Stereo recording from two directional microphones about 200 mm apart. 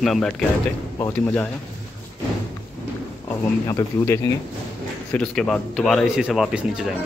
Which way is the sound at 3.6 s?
15° left (ahead or behind).